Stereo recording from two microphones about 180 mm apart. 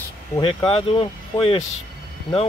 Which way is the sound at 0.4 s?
30° left (ahead or behind).